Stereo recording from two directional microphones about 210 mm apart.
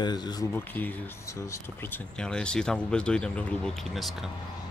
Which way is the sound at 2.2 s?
5° left (ahead or behind).